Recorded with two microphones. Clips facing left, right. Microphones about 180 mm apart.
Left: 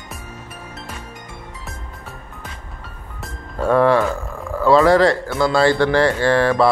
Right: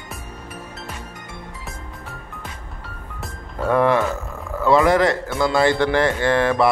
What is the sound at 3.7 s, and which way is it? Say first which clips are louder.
Speech: left 3 dB; 20° right (ahead or behind).